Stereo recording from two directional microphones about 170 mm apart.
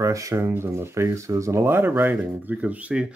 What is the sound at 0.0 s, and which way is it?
Speech, 20° right (ahead or behind).